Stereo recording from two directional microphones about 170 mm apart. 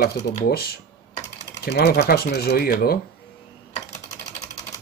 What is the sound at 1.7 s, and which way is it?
Speech, 80° left.